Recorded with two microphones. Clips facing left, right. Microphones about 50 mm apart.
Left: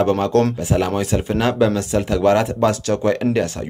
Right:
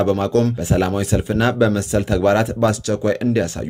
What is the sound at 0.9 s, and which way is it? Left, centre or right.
Speech, centre.